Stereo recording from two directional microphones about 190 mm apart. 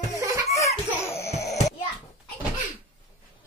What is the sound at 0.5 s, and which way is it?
Belly laugh, 15° left (ahead or behind).